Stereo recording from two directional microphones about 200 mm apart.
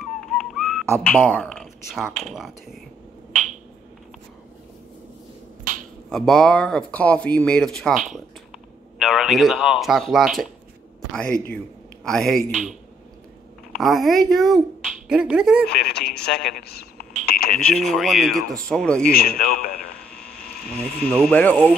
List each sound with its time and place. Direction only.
0.0 s whistling: centre (ahead or behind)
1.0 s speech: 5° left (ahead or behind)
5.7 s finger snapping: 45° right (ahead or behind)
6.0 s speech: centre (ahead or behind)
12.0 s speech: 5° left (ahead or behind)
13.7 s speech: centre (ahead or behind)
15.8 s a man's voice: 55° left (ahead or behind)
17.3 s a sound: 50° left (ahead or behind)
17.6 s speech: 5° left (ahead or behind)
19.1 s a man's voice: 50° left (ahead or behind)
20.7 s speech: 5° left (ahead or behind)